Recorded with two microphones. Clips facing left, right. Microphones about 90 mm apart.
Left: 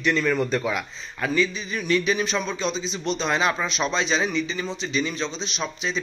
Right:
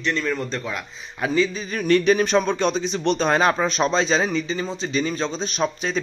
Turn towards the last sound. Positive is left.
turn(degrees=-45)  # may be behind; listen again after turning